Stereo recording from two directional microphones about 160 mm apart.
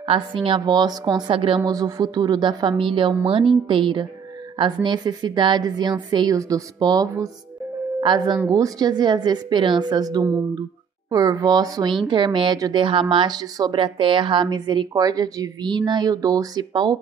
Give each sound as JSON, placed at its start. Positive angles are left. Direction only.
{"t": 0.0, "sound": "a woman's voice", "side_deg": -35}
{"t": 8.4, "sound": "a woman's voice", "side_deg": -20}